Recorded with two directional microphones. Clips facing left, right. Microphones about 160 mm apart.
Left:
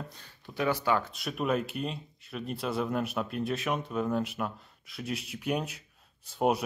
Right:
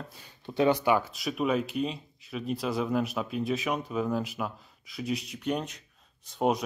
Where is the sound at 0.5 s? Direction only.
20° right (ahead or behind).